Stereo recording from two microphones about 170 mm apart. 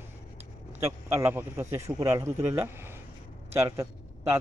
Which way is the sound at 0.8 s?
20° right (ahead or behind).